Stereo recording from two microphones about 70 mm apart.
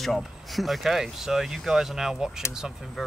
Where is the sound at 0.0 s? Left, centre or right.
Centre.